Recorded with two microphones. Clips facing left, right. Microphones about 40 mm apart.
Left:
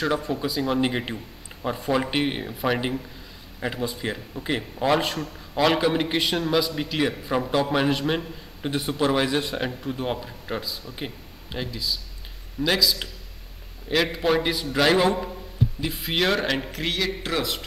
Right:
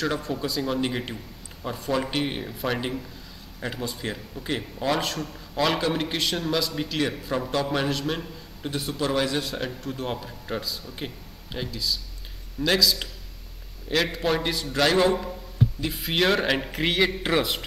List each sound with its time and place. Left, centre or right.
0.0 s a man's voice: centre